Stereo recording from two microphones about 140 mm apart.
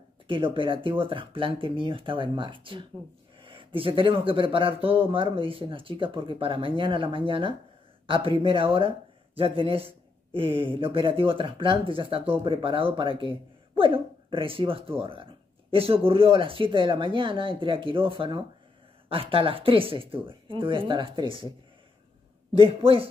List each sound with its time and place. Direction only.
0.3 s speech: 40° right (ahead or behind)
22.5 s speech: 40° right (ahead or behind)